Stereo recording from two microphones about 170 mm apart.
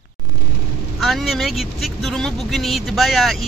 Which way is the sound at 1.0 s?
Centre (ahead or behind).